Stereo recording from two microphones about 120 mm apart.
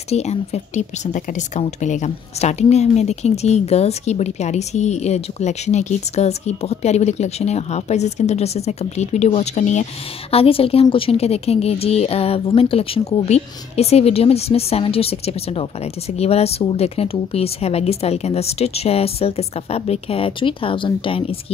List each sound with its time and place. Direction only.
0.1 s a woman's voice: 65° left (ahead or behind)
10.3 s speech: 55° left (ahead or behind)